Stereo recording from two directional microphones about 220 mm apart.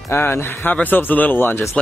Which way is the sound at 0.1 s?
10° left (ahead or behind).